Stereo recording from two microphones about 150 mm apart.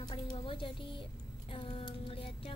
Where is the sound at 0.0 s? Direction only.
30° left (ahead or behind).